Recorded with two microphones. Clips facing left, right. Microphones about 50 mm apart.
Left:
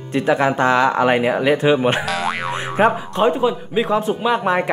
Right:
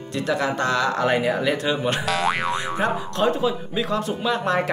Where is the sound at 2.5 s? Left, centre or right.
Centre.